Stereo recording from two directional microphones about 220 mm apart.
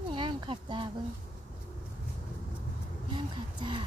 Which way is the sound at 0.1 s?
20° right (ahead or behind).